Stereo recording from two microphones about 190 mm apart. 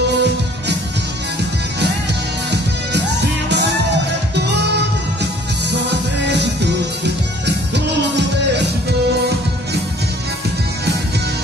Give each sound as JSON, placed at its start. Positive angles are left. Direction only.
{"t": 0.1, "sound": "music", "side_deg": -65}
{"t": 2.5, "sound": "music", "side_deg": -60}